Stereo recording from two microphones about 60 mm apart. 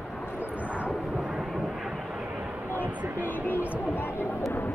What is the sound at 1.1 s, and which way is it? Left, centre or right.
Vehicle, centre.